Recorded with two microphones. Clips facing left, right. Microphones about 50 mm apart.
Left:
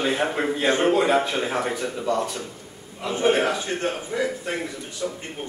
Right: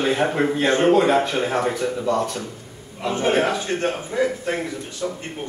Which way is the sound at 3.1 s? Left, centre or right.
Right.